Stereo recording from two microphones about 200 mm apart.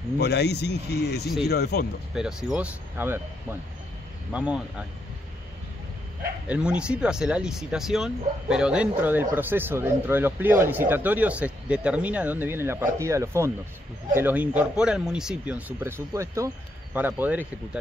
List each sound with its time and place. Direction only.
0.2 s speech: 55° left (ahead or behind)
2.1 s speech: centre (ahead or behind)
4.3 s speech: 5° right (ahead or behind)
6.2 s speech: 5° right (ahead or behind)